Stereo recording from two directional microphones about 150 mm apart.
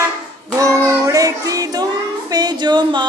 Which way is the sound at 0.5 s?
20° right (ahead or behind).